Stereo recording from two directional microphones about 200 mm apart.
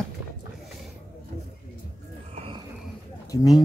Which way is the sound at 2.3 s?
30° right (ahead or behind).